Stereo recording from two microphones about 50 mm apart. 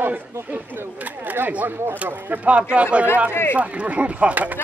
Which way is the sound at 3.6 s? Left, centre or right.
Right.